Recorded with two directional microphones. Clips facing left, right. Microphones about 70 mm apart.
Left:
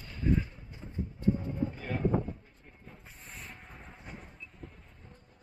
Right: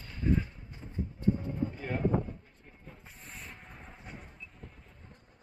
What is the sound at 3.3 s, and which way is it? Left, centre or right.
Train, centre.